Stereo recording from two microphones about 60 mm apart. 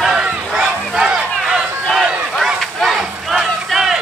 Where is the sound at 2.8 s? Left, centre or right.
Centre.